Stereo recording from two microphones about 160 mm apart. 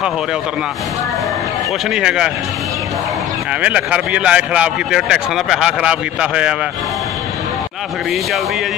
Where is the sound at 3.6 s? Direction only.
10° right (ahead or behind).